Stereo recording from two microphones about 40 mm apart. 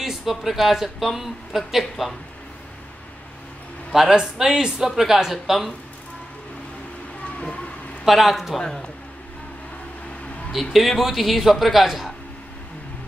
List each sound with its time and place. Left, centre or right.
0.0 s a man's voice: centre
3.9 s speech: centre
4.8 s speech: centre
8.0 s a man's voice: centre
8.5 s a man's voice: centre
10.5 s a man's voice: centre